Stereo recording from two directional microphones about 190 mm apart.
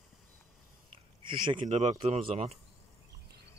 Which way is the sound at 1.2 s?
25° right (ahead or behind).